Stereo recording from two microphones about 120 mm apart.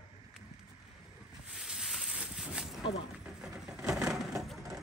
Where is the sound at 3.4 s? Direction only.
5° right (ahead or behind).